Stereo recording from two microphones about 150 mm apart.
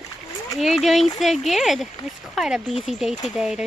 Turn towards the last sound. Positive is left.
turn(degrees=-5)  # may be behind; listen again after turning